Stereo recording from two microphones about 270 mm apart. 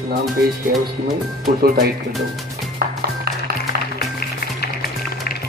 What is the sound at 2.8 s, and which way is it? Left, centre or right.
Music, right.